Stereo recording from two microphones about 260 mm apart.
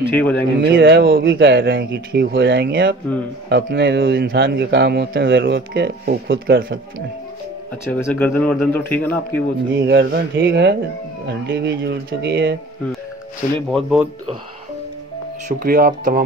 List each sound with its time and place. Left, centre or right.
0.1 s speech: centre
0.6 s speech: right
8.0 s speech: centre
9.8 s speech: right
13.7 s speech: centre
15.4 s speech: right